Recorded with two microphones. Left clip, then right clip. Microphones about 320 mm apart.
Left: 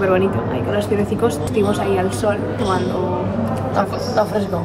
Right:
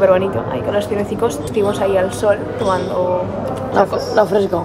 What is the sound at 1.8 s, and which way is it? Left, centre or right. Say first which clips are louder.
Speech: right 3 dB; centre.